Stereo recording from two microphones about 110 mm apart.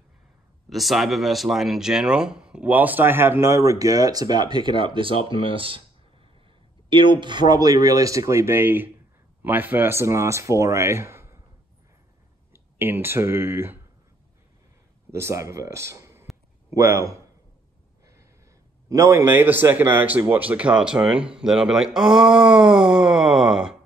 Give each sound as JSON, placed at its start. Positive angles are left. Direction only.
{"t": 0.7, "sound": "speech", "side_deg": 0}
{"t": 6.9, "sound": "speech", "side_deg": -50}
{"t": 12.5, "sound": "speech", "side_deg": -20}
{"t": 15.0, "sound": "speech", "side_deg": -25}
{"t": 18.9, "sound": "speech", "side_deg": -25}